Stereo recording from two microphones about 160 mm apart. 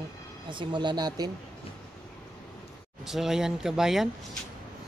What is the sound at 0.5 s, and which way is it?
Speech, 30° right (ahead or behind).